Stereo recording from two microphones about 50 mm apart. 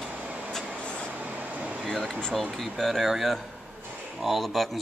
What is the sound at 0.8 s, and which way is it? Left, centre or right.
Vehicle, left.